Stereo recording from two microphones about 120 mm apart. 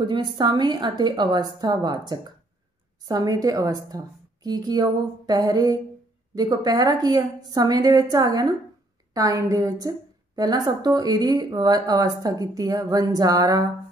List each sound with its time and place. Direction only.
0.0 s a woman's voice: 40° right (ahead or behind)